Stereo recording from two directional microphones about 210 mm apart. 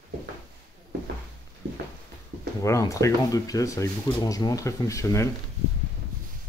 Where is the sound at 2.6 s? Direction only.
15° left (ahead or behind).